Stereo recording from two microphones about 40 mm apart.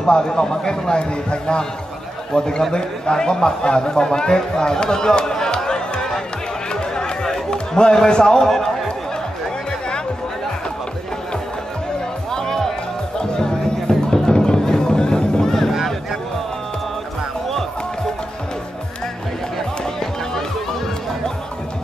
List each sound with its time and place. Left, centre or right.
0.0 s speech: centre
4.0 s a sound: left
6.7 s chatter: centre
7.5 s a man's voice: left
8.5 s a sound: centre
9.7 s music: left
12.3 s music: centre
15.7 s a sound: centre
19.8 s music: centre